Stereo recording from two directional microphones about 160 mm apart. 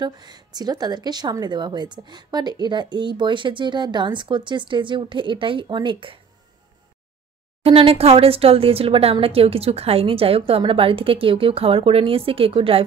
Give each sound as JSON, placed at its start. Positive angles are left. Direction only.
{"t": 0.0, "sound": "speech", "side_deg": -25}
{"t": 7.6, "sound": "speech", "side_deg": -35}